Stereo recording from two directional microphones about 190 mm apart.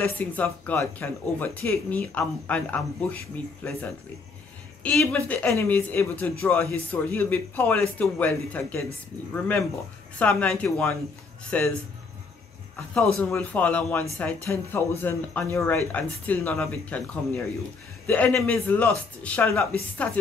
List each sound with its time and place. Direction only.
0.2 s speech: 5° left (ahead or behind)
4.8 s speech: 5° left (ahead or behind)
12.9 s a man's voice: 5° left (ahead or behind)